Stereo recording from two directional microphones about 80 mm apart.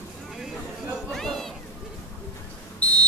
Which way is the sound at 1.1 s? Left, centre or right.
Centre.